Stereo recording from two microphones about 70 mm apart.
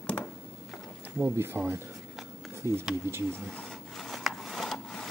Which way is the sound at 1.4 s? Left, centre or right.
Right.